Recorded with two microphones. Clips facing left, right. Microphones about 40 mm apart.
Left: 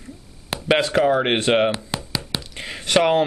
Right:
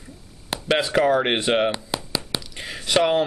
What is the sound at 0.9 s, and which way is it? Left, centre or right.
Speech, centre.